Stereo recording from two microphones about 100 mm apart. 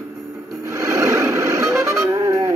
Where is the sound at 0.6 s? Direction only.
30° right (ahead or behind).